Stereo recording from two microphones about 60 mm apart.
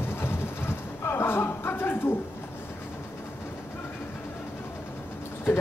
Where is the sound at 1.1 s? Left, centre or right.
Left.